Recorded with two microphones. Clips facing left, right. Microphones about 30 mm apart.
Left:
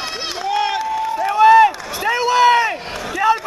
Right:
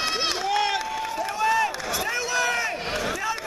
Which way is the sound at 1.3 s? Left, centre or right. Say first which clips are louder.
Left 14 dB; left.